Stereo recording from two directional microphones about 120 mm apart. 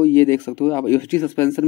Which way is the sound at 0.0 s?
25° left (ahead or behind).